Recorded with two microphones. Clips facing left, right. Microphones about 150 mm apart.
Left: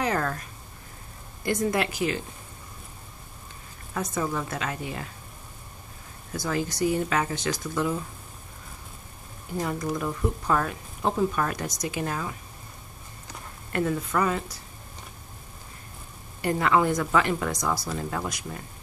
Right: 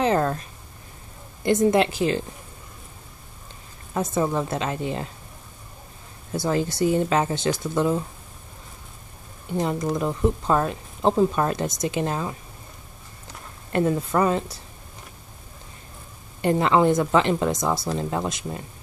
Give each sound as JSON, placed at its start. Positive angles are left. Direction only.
{"t": 0.0, "sound": "a sound", "side_deg": -25}
{"t": 1.4, "sound": "speech", "side_deg": -25}
{"t": 3.9, "sound": "speech", "side_deg": -25}
{"t": 6.3, "sound": "speech", "side_deg": -30}
{"t": 9.6, "sound": "speech", "side_deg": -25}
{"t": 13.7, "sound": "speech", "side_deg": -30}
{"t": 16.3, "sound": "speech", "side_deg": -25}